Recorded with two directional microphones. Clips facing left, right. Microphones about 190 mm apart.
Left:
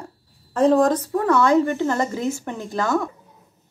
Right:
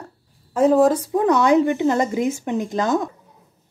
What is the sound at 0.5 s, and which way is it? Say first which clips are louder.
A woman's voice: right 1 dB; 5° right (ahead or behind).